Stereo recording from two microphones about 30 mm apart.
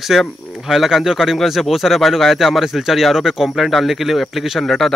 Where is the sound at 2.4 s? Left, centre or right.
Centre.